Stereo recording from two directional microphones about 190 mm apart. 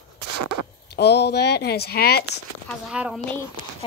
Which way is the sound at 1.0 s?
60° left (ahead or behind).